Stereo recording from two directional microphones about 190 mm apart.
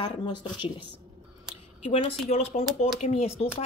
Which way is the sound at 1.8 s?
30° left (ahead or behind).